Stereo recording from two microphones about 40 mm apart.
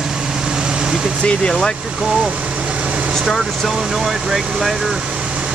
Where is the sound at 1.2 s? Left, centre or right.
Centre.